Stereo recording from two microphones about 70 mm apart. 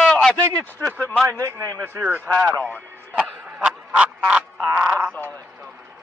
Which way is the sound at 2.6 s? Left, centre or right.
Left.